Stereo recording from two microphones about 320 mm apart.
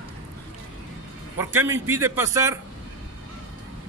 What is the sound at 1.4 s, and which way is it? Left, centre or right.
A man's voice, centre.